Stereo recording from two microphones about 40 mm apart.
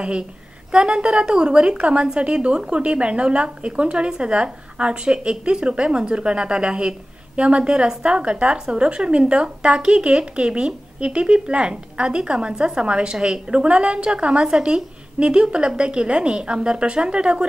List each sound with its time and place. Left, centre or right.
0.7 s speech: centre